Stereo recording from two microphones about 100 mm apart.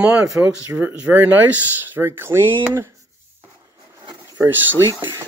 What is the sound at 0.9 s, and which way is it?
Speech, 15° right (ahead or behind).